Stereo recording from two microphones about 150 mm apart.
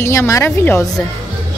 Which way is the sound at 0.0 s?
20° left (ahead or behind).